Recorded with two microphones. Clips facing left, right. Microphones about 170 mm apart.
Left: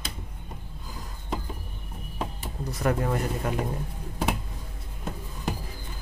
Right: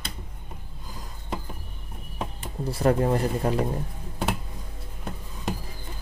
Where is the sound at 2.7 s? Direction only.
30° right (ahead or behind).